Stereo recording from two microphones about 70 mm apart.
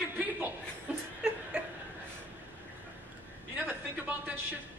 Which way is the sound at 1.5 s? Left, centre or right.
Centre.